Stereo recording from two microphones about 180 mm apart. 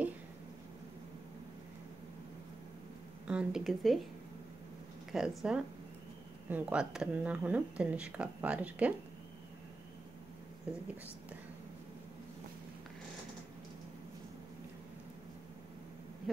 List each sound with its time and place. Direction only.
3.3 s speech: 5° right (ahead or behind)
5.1 s speech: 5° right (ahead or behind)
10.7 s speech: 5° right (ahead or behind)